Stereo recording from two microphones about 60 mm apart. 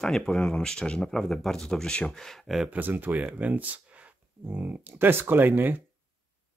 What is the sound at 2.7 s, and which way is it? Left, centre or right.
Speech, right.